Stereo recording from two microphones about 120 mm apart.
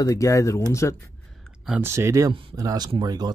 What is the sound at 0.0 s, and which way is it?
Speech, 25° left (ahead or behind).